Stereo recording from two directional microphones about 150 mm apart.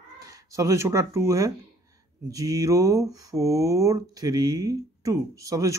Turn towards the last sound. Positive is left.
turn(degrees=-20)  # may be behind; listen again after turning